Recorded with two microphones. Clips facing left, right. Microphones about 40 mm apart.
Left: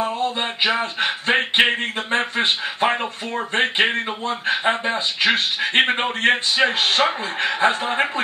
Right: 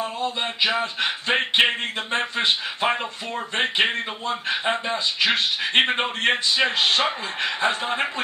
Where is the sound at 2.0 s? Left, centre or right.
Left.